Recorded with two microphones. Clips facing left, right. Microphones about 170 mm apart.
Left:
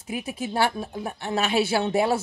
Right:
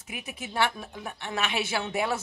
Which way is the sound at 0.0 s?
30° left (ahead or behind).